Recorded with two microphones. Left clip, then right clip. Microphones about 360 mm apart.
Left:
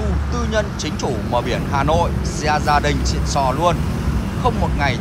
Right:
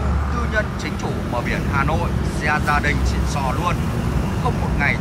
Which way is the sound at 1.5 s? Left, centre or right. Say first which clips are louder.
Left 1 dB; centre.